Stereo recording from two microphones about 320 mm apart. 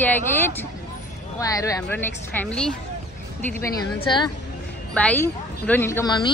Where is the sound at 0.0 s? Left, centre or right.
Centre.